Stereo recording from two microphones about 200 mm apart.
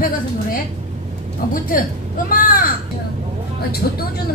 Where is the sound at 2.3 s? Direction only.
45° left (ahead or behind).